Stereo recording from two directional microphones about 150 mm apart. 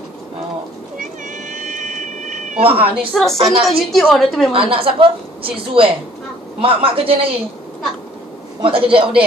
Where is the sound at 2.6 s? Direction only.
40° right (ahead or behind).